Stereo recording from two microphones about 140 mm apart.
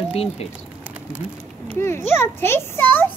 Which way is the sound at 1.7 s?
20° left (ahead or behind).